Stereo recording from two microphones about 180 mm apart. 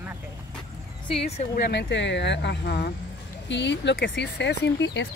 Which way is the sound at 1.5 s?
70° left (ahead or behind).